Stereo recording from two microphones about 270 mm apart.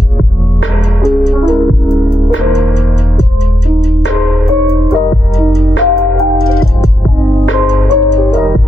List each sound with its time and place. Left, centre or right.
1.0 s music: left
5.4 s music: left